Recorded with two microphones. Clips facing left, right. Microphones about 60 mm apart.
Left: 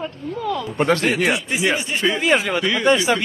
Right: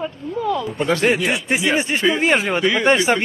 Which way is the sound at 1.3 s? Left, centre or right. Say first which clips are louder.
Right 2 dB; right.